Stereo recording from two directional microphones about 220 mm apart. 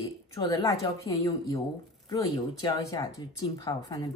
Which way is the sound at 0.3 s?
15° left (ahead or behind).